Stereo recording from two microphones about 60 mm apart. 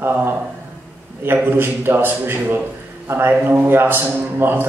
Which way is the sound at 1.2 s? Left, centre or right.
Right.